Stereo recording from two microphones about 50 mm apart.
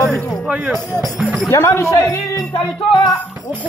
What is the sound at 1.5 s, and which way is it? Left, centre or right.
Speech, left.